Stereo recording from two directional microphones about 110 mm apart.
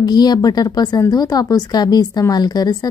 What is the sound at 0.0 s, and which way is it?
A woman's voice, 40° left (ahead or behind).